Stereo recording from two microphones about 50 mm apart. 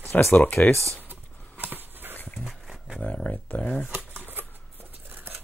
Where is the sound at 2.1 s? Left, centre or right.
Left.